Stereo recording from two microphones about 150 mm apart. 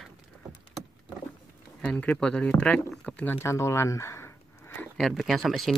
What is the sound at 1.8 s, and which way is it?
Speech, 5° left (ahead or behind).